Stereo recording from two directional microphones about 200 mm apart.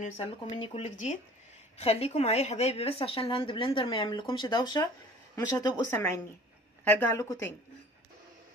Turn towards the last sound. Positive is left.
turn(degrees=15)  # may be behind; listen again after turning